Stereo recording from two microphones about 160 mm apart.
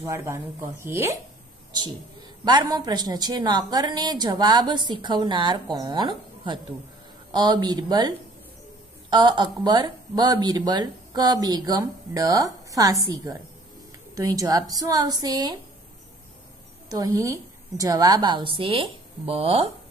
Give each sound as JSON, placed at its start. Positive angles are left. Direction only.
{"t": 0.0, "sound": "speech", "side_deg": -15}
{"t": 2.4, "sound": "a woman's voice", "side_deg": -25}
{"t": 9.1, "sound": "a woman's voice", "side_deg": -25}
{"t": 16.9, "sound": "a woman's voice", "side_deg": -20}